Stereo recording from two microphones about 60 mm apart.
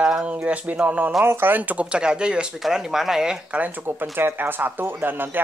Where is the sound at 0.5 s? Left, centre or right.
Right.